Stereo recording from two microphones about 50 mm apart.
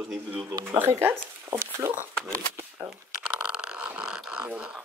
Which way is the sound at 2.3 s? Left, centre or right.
Right.